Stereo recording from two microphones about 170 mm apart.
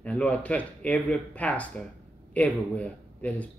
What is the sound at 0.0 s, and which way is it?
A man's voice, 10° left (ahead or behind).